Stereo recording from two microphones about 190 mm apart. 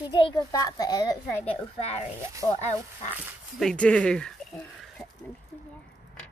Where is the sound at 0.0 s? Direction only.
25° left (ahead or behind).